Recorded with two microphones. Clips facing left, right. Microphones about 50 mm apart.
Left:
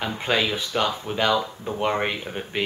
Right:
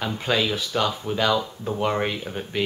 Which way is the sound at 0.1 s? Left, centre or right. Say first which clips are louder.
Even; left.